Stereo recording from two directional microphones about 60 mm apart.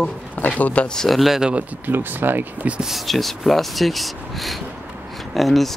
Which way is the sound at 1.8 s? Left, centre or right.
Right.